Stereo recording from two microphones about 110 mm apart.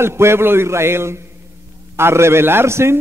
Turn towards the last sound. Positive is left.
turn(degrees=-25)  # may be behind; listen again after turning